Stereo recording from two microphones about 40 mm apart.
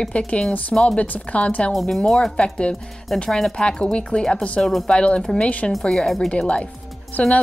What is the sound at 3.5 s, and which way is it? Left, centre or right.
Speech, left.